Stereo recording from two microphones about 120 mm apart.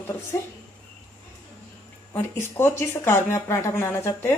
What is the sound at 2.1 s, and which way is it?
Speech, 20° left (ahead or behind).